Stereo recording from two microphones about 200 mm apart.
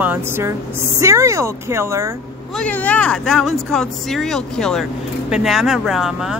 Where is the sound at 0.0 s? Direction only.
10° right (ahead or behind).